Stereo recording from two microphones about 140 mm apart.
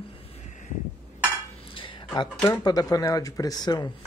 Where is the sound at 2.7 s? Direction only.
25° left (ahead or behind).